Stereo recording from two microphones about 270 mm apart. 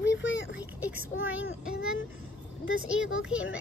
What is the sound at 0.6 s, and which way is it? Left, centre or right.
Speech, centre.